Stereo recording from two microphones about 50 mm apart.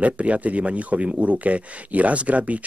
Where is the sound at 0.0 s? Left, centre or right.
Right.